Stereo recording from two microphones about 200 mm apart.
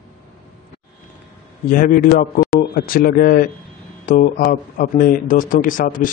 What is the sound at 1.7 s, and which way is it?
Speech, 45° left (ahead or behind).